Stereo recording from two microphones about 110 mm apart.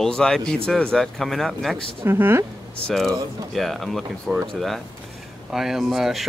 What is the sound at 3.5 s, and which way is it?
Speech, centre (ahead or behind).